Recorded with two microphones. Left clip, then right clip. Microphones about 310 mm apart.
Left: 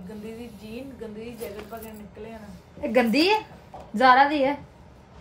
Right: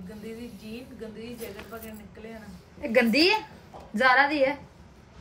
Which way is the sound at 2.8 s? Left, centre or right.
Centre.